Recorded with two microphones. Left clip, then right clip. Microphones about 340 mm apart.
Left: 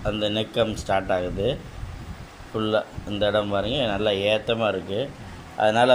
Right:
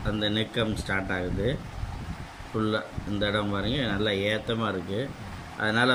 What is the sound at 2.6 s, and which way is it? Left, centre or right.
Speech, centre.